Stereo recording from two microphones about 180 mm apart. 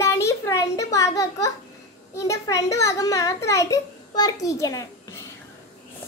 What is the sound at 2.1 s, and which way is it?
A child's voice, 15° left (ahead or behind).